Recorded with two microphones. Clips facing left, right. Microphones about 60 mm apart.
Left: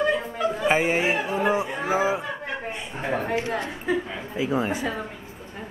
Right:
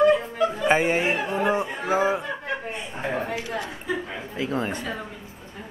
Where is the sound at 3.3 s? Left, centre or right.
Left.